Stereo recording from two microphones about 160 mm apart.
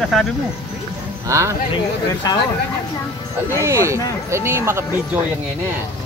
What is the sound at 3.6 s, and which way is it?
Speech, 20° right (ahead or behind).